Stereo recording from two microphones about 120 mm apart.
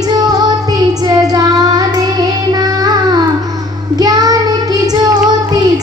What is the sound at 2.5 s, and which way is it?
Music, 35° right (ahead or behind).